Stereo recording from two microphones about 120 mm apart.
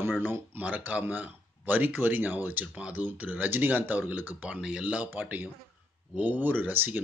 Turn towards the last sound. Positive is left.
turn(degrees=-15)  # may be behind; listen again after turning